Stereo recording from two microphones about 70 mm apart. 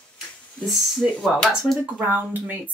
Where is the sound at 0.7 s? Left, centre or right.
Centre.